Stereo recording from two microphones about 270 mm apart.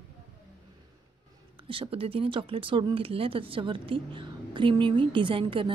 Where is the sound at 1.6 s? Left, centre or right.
Centre.